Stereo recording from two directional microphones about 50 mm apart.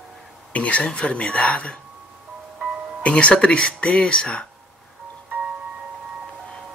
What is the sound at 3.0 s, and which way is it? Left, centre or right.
Speech, left.